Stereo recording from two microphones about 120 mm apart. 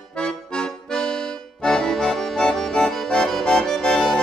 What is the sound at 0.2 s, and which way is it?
Accordion, 5° left (ahead or behind).